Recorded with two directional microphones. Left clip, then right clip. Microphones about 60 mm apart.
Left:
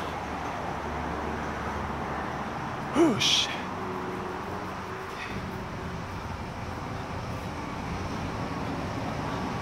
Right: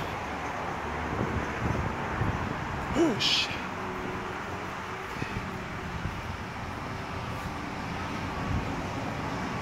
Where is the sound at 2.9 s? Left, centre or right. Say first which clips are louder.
Left 3 dB; left.